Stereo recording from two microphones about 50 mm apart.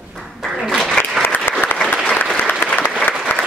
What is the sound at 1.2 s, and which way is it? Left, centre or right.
Applause, left.